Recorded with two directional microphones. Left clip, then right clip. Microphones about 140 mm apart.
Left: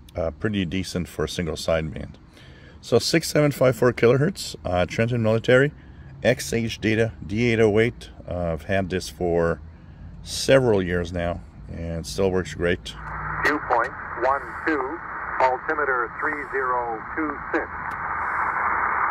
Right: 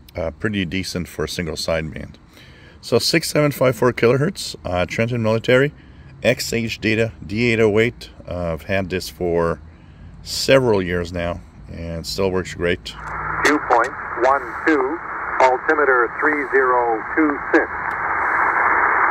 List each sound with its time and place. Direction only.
0.1 s speech: 20° right (ahead or behind)
13.0 s vehicle: 25° right (ahead or behind)